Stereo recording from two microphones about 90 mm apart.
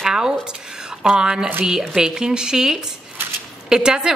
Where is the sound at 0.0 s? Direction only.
5° right (ahead or behind).